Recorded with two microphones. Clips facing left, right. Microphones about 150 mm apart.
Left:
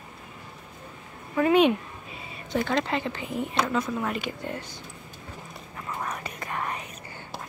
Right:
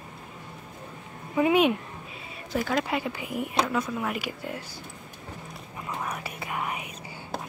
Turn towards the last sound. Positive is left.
turn(degrees=-10)  # may be behind; listen again after turning